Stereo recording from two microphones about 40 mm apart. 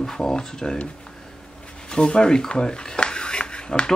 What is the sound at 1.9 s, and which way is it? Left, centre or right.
Speech, left.